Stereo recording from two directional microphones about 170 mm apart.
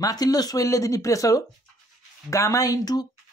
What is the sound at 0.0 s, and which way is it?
Speech, 20° left (ahead or behind).